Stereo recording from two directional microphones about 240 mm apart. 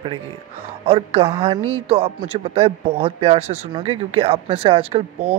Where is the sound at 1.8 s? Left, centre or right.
Right.